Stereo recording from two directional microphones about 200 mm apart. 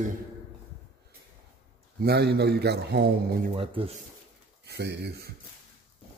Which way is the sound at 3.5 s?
30° right (ahead or behind).